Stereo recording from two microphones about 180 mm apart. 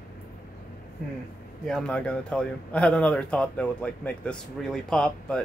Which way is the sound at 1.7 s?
5° left (ahead or behind).